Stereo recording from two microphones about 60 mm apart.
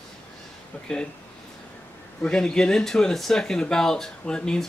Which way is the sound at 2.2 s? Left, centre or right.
Centre.